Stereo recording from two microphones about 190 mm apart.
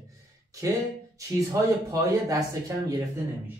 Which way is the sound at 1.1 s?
20° right (ahead or behind).